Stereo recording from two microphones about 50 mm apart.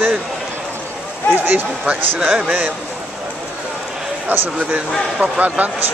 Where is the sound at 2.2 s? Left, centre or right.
Right.